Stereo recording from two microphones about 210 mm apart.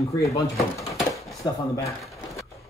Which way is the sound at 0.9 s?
Centre (ahead or behind).